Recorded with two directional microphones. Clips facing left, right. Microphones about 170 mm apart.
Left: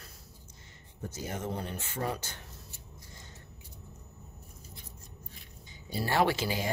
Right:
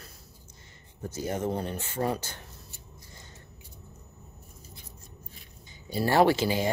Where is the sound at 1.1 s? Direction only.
35° right (ahead or behind).